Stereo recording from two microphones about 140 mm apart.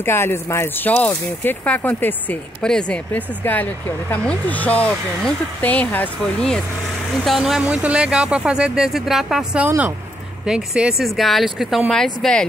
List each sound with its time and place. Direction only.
0.0 s speech: 15° left (ahead or behind); by 9.7 s 5° right (ahead or behind)
9.7 s speech: 15° right (ahead or behind)
10.4 s speech: 5° right (ahead or behind)